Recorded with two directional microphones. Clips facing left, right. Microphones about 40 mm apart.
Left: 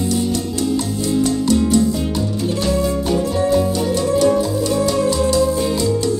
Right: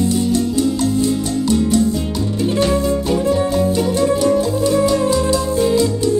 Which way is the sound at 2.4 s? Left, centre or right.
Right.